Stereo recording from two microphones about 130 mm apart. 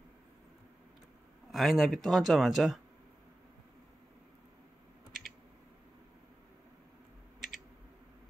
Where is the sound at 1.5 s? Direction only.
Centre (ahead or behind).